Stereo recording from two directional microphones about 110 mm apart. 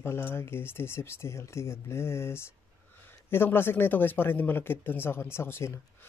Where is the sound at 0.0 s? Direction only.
20° left (ahead or behind).